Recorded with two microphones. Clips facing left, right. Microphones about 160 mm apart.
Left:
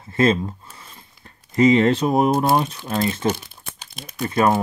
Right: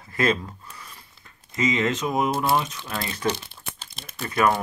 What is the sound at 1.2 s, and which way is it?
Speech, 35° left (ahead or behind).